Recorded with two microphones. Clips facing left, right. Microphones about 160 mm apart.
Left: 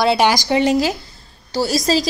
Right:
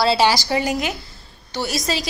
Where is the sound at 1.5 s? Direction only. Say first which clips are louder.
Left 6 dB; 35° left (ahead or behind).